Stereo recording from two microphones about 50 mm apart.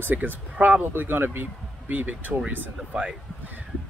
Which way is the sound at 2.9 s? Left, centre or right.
Right.